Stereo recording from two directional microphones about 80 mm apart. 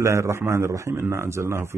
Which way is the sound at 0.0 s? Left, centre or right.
Right.